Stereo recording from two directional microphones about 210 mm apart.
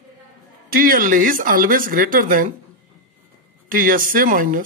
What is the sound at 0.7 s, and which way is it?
Speech, 40° right (ahead or behind).